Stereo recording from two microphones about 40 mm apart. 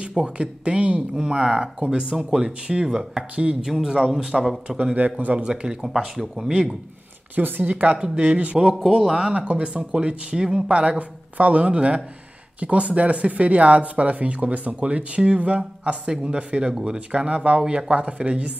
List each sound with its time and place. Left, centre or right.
0.0 s speech: right
4.9 s speech: right
5.4 s speech: right
5.8 s speech: centre
7.3 s a woman's voice: right
7.7 s speech: right
8.7 s speech: centre
9.3 s speech: right
10.7 s speech: right